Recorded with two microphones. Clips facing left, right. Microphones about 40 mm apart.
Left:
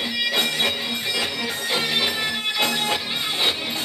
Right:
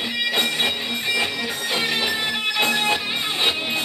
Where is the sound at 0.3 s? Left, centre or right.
Centre.